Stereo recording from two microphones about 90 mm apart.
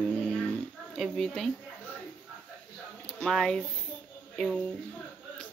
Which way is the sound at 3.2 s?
5° left (ahead or behind).